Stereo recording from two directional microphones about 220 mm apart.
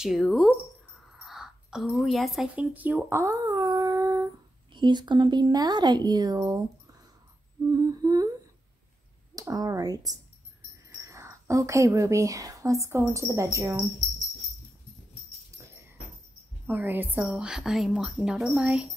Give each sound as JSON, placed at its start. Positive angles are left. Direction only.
{"t": 0.0, "sound": "a woman's voice", "side_deg": 0}
{"t": 1.2, "sound": "a sound", "side_deg": 0}
{"t": 4.7, "sound": "speech", "side_deg": -20}
{"t": 7.7, "sound": "humming", "side_deg": -15}
{"t": 9.3, "sound": "speech", "side_deg": -15}
{"t": 16.6, "sound": "a woman's voice", "side_deg": -10}